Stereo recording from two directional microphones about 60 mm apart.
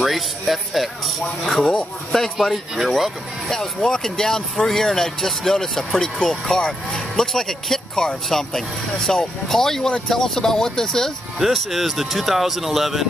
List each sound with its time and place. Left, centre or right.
0.0 s speech: centre
3.4 s speech: centre
5.9 s speech: centre
11.3 s speech: centre